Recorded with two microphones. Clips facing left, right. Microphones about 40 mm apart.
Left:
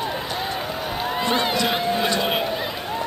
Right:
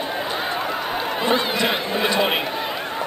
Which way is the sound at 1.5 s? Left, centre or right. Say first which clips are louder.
Even; centre.